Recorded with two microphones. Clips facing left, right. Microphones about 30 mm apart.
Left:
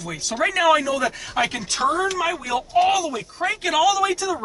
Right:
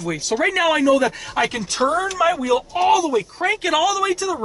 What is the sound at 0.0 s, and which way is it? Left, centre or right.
A man's voice, centre.